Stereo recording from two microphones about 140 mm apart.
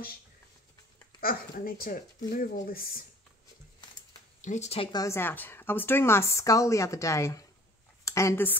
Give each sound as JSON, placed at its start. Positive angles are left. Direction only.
{"t": 1.2, "sound": "speech", "side_deg": 90}
{"t": 4.4, "sound": "speech", "side_deg": 55}
{"t": 4.9, "sound": "a woman's voice", "side_deg": 20}